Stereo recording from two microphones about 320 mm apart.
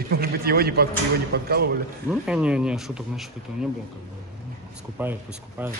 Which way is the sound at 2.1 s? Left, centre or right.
Centre.